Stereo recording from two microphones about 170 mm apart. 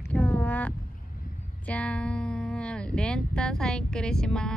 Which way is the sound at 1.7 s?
5° left (ahead or behind).